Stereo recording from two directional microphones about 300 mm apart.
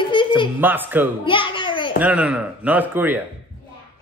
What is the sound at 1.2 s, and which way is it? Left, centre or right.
Babbling, centre.